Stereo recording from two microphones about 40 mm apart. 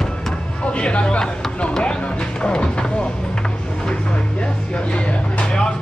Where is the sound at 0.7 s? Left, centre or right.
Left.